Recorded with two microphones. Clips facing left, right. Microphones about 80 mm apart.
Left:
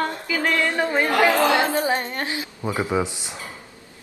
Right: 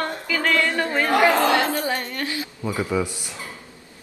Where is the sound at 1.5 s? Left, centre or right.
Left.